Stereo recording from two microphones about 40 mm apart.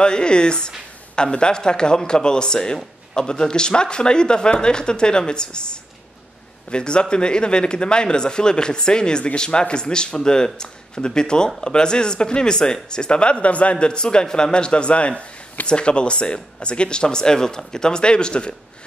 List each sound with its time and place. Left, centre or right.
0.0 s a man's voice: left